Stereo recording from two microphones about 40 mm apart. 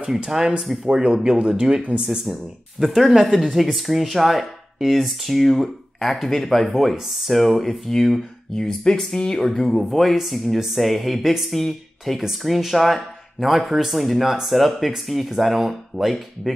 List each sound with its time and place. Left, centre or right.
0.2 s speech: centre
2.0 s speech: centre
9.5 s speech: centre
12.2 s speech: centre